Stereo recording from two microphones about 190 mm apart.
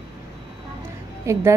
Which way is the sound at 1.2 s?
15° right (ahead or behind).